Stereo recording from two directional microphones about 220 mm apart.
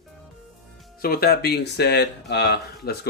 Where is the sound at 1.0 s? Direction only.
45° left (ahead or behind).